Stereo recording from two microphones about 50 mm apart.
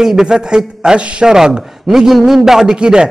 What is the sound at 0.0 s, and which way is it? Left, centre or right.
A man's voice, centre.